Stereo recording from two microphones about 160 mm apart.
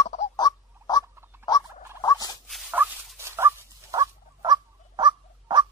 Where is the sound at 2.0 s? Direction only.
25° left (ahead or behind).